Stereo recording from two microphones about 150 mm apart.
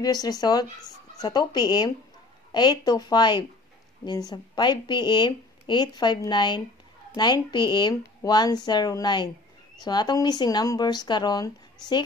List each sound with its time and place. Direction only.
0.0 s a woman's voice: 25° left (ahead or behind)